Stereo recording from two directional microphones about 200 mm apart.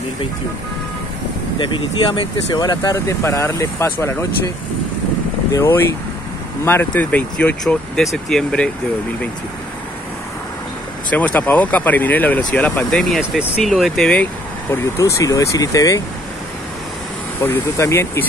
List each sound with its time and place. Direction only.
1.6 s speech: 25° left (ahead or behind)
5.5 s speech: 15° left (ahead or behind)
11.1 s speech: 10° left (ahead or behind)
14.7 s speech: 15° left (ahead or behind)
17.4 s speech: 15° left (ahead or behind)